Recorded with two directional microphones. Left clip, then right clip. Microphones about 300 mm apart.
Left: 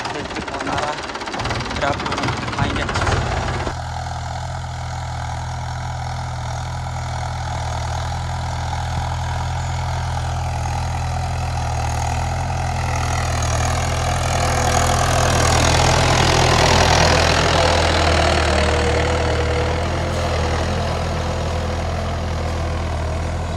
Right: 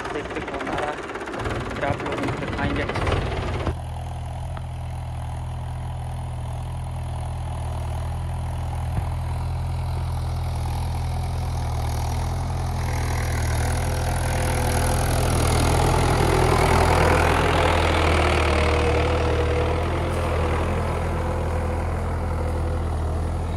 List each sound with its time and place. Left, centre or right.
13.6 s vehicle: left